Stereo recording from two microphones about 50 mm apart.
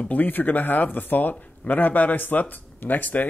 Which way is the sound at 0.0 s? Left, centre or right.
Left.